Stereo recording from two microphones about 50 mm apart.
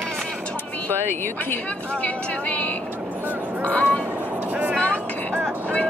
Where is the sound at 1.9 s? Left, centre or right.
Left.